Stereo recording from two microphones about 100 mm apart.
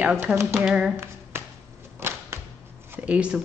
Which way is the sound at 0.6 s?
5° right (ahead or behind).